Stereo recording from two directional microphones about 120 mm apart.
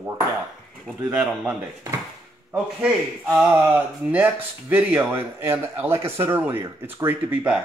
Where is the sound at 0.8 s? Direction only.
5° right (ahead or behind).